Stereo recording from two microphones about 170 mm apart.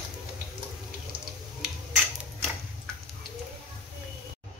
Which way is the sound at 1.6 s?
5° right (ahead or behind).